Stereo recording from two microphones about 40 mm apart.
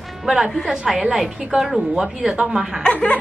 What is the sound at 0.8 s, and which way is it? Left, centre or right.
A woman's voice, centre.